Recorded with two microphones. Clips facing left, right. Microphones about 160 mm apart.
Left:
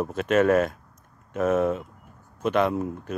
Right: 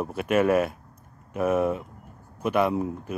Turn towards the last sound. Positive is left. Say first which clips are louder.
# even
turn(degrees=-10)  # may be behind; listen again after turning